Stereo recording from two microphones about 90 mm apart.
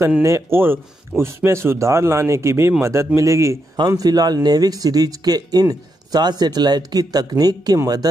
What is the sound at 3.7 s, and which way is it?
Speech, 45° right (ahead or behind).